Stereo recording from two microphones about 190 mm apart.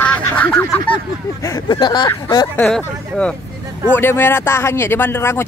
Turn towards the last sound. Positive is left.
turn(degrees=10)  # may be behind; listen again after turning